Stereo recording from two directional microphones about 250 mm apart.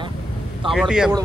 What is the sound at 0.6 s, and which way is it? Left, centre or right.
Speech, centre.